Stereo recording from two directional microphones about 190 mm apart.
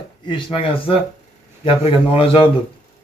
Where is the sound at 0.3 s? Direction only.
25° left (ahead or behind).